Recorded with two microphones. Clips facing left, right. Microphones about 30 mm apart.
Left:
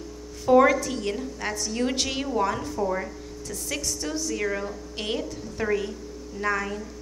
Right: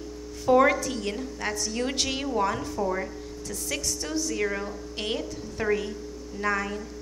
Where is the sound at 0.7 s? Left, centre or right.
Centre.